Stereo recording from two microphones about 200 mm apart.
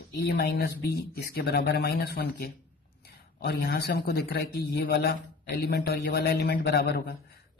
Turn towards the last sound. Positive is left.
turn(degrees=50)  # may be behind; listen again after turning